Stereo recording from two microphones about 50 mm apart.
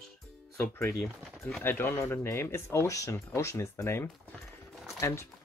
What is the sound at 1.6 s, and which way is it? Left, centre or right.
Speech, left.